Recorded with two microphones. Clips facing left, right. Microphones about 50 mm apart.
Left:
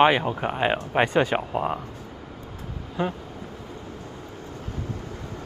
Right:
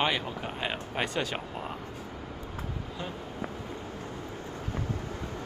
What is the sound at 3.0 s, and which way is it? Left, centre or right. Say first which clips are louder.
Speech: left 13 dB; left.